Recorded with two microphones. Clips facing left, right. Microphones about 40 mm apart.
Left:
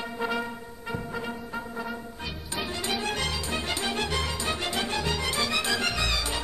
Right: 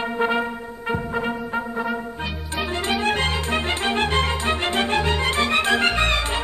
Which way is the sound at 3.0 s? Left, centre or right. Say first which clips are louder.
Right 8 dB; right.